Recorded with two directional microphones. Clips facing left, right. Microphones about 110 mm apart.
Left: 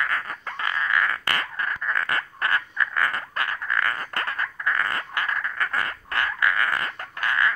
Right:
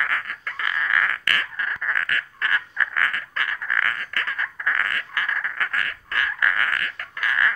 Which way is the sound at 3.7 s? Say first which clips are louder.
Even; 20° left (ahead or behind).